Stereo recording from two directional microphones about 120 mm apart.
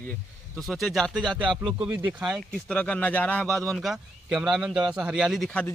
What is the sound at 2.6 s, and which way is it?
Speech, 10° left (ahead or behind).